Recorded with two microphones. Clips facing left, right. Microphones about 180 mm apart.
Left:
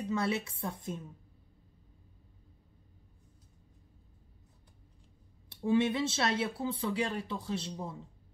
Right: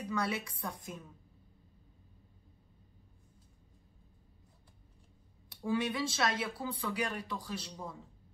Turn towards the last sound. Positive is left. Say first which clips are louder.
# left 5 dB
turn(degrees=25)  # may be behind; listen again after turning